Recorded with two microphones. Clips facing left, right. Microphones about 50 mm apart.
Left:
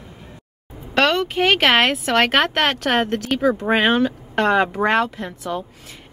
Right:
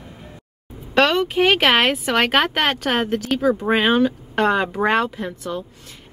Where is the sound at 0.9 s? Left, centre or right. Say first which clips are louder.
Right 1 dB; centre.